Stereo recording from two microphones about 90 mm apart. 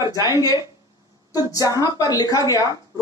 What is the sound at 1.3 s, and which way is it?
Speech, 45° left (ahead or behind).